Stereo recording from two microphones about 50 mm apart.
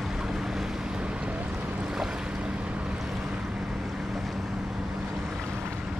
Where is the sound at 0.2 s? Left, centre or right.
Centre.